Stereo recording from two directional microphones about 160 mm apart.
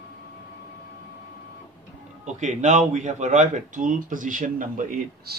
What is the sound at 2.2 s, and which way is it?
Speech, 50° right (ahead or behind).